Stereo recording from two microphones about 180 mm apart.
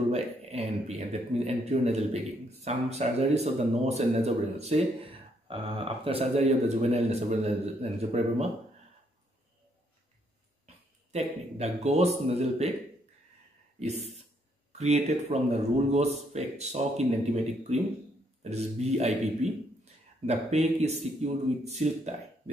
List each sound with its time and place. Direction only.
0.1 s a man's voice: 35° right (ahead or behind)
11.1 s a man's voice: 35° right (ahead or behind)
14.7 s a man's voice: 40° right (ahead or behind)
18.4 s a man's voice: 35° right (ahead or behind)